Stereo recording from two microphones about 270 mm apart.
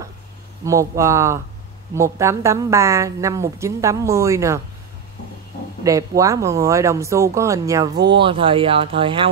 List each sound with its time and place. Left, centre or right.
0.7 s a woman's voice: centre
5.9 s a woman's voice: centre